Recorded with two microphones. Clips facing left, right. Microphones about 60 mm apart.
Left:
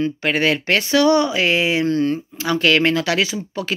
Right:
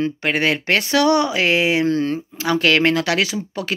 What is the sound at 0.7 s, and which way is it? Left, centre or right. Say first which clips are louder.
Speech: left 1 dB; right.